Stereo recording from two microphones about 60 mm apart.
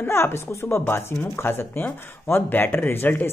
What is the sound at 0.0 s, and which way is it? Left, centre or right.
Speech, left.